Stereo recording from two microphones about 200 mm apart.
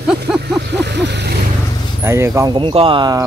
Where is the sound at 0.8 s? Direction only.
60° right (ahead or behind).